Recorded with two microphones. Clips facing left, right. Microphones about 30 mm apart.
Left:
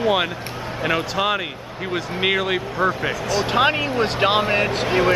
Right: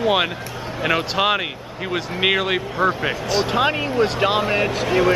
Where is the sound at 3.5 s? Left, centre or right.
Centre.